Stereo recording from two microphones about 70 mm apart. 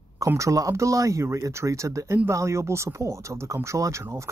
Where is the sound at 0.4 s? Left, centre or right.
Right.